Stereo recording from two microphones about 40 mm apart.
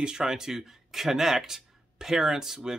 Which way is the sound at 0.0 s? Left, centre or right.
Centre.